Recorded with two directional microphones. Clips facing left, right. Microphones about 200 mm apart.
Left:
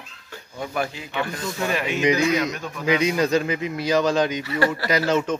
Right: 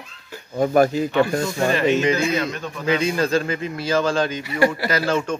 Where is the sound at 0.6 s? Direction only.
45° right (ahead or behind).